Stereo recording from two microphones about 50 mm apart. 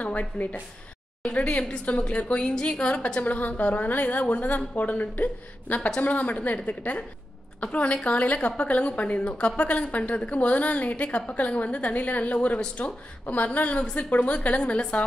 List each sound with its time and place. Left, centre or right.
0.0 s a woman's voice: left
3.2 s a woman's voice: left